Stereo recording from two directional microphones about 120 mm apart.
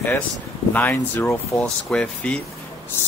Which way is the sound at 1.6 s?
5° left (ahead or behind).